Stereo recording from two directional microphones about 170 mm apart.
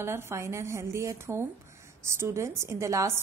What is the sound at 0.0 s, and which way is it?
A woman's voice, 15° right (ahead or behind).